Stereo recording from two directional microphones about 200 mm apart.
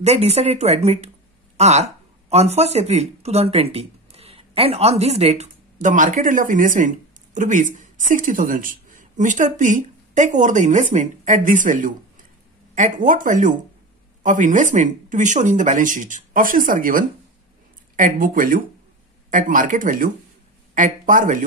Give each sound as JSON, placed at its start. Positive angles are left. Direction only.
{"t": 0.0, "sound": "speech", "side_deg": -30}